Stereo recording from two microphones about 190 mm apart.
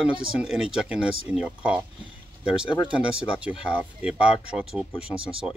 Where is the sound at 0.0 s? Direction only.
5° right (ahead or behind).